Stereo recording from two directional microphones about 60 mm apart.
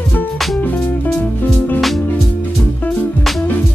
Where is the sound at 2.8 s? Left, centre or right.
Left.